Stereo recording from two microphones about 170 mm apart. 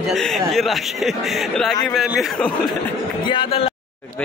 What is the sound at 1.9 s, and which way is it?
Speech, centre (ahead or behind).